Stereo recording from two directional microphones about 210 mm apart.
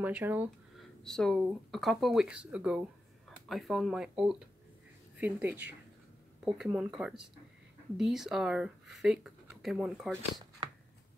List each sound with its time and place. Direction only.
0.0 s speech: 10° right (ahead or behind)
1.0 s speech: centre (ahead or behind)
10.3 s a sound: 20° right (ahead or behind)